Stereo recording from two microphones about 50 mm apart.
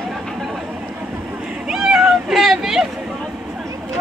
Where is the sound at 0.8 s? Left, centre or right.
Right.